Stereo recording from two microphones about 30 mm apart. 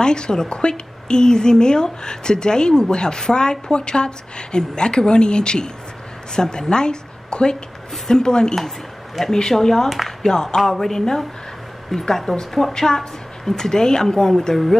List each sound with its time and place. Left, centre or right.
0.0 s a woman's voice: left
8.5 s speech: centre
10.6 s a woman's voice: centre